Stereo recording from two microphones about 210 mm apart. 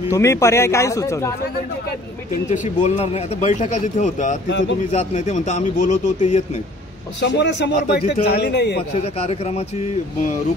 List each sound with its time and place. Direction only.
0.1 s speech: 15° left (ahead or behind)
2.5 s speech: 35° left (ahead or behind)
4.5 s speech: 60° left (ahead or behind)
4.9 s speech: 35° left (ahead or behind)
7.2 s speech: 55° left (ahead or behind)
8.9 s speech: 30° left (ahead or behind)